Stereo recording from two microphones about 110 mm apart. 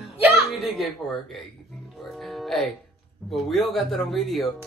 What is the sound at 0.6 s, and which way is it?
Speech, centre (ahead or behind).